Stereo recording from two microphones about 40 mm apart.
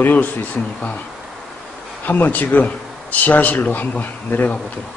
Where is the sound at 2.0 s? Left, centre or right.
Left.